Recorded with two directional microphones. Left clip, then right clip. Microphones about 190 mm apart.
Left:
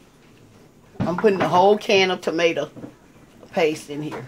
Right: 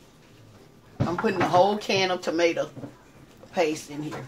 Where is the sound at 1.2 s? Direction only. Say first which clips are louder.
Left 4 dB; 55° left (ahead or behind).